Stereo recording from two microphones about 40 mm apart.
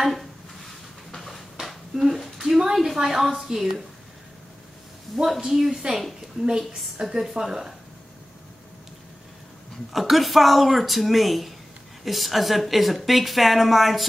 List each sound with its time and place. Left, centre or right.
0.0 s speech: centre
1.1 s a sound: centre
3.4 s a woman's voice: centre
5.1 s a woman's voice: centre
9.9 s a woman's voice: centre